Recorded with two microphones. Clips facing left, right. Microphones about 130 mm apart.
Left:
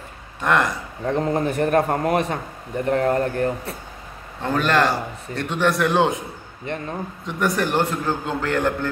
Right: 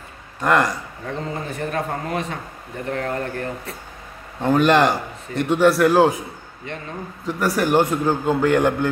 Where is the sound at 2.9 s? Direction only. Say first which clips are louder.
Left 5 dB; 35° left (ahead or behind).